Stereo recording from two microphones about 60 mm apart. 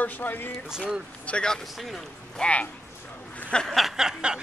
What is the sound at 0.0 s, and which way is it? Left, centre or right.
Speech, left.